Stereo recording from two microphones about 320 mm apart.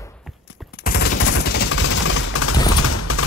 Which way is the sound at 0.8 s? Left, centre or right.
Left.